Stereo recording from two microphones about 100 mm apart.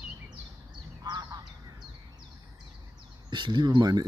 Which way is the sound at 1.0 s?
45° right (ahead or behind).